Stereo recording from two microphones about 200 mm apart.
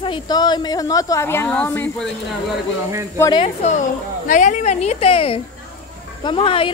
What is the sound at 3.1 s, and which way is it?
A woman's voice, 20° left (ahead or behind).